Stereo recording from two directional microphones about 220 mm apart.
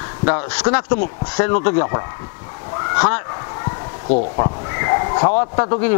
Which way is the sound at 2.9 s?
15° left (ahead or behind).